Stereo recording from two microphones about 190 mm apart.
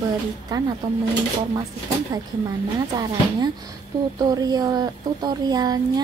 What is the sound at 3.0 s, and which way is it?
A woman's voice, 20° right (ahead or behind).